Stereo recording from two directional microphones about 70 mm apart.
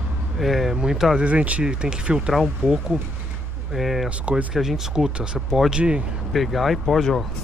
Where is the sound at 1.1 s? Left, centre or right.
Centre.